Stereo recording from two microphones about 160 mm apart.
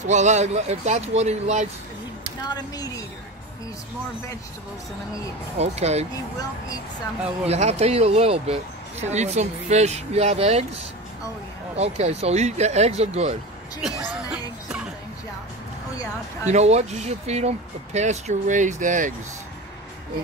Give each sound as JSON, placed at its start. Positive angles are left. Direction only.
{"t": 0.0, "sound": "speech", "side_deg": -45}
{"t": 2.4, "sound": "a sound", "side_deg": 25}
{"t": 5.6, "sound": "speech", "side_deg": -40}
{"t": 7.4, "sound": "speech", "side_deg": -40}
{"t": 16.4, "sound": "speech", "side_deg": -45}